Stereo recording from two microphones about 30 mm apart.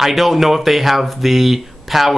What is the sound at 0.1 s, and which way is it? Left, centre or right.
Speech, centre.